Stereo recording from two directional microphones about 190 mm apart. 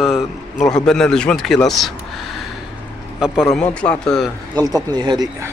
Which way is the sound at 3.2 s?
Centre (ahead or behind).